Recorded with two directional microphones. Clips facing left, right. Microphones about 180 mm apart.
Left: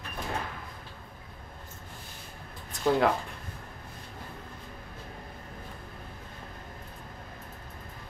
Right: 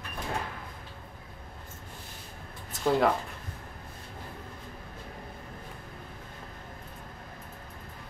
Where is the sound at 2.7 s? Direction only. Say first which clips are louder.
Even; centre (ahead or behind).